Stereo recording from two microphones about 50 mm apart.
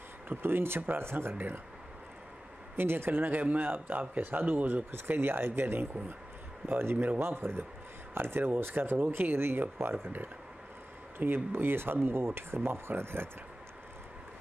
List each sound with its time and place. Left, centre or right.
0.3 s speech: right
2.7 s speech: right